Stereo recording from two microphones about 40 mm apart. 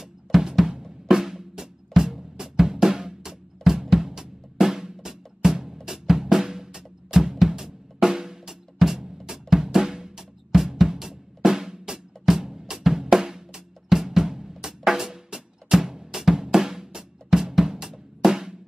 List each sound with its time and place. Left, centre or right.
0.0 s drum: centre
18.2 s music: centre